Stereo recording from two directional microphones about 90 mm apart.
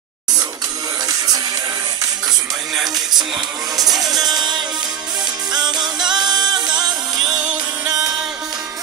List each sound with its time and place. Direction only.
1.0 s music: 45° right (ahead or behind)
2.7 s music: 5° right (ahead or behind)
4.0 s music: 45° right (ahead or behind)
7.2 s music: 10° right (ahead or behind)